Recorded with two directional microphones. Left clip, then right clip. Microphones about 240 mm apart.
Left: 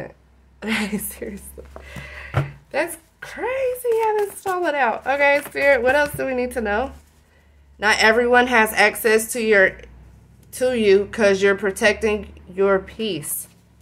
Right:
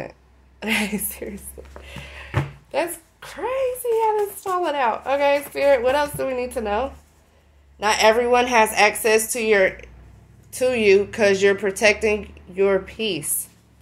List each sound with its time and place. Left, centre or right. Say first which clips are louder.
0.6 s a woman's voice: right 1 dB; centre